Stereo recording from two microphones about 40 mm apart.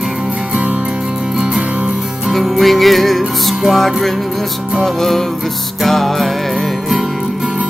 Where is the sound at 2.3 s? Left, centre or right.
Centre.